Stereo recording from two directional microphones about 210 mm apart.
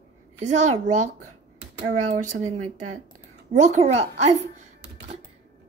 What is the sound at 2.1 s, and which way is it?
Speech, 35° right (ahead or behind).